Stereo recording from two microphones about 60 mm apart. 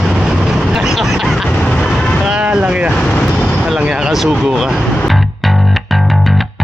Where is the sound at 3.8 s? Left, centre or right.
Centre.